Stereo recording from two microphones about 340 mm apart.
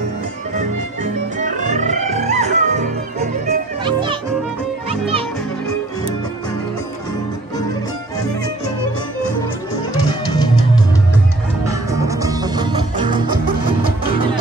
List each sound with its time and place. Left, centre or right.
0.6 s music: right
11.6 s music: centre